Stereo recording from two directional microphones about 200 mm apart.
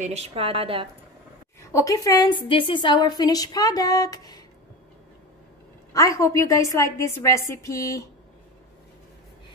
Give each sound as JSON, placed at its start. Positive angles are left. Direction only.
{"t": 0.0, "sound": "a woman's voice", "side_deg": -30}
{"t": 1.6, "sound": "a woman's voice", "side_deg": 15}
{"t": 5.9, "sound": "a woman's voice", "side_deg": 15}